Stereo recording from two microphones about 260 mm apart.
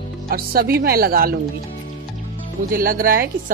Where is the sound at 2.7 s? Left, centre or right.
Right.